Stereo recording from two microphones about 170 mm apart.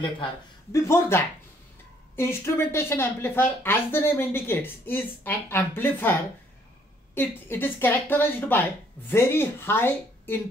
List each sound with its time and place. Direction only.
0.7 s speech: 15° left (ahead or behind)
7.2 s speech: 10° left (ahead or behind)